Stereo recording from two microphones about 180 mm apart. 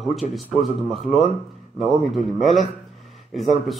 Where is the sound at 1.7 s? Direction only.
Centre (ahead or behind).